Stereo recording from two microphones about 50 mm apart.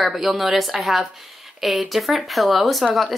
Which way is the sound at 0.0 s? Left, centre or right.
Centre.